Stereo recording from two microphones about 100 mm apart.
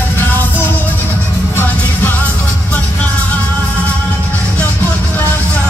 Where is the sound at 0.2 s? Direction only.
20° left (ahead or behind).